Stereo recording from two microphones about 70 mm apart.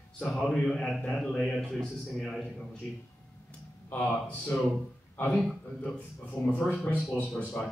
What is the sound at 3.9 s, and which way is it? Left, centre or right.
Speech, left.